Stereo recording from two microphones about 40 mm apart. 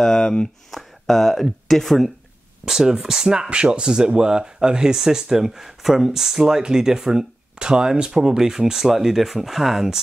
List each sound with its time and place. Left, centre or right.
0.2 s speech: left
0.7 s speech: centre
2.6 s speech: centre